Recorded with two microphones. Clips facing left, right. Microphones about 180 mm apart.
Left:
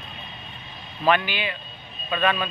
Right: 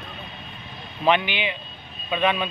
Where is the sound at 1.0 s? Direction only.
20° right (ahead or behind).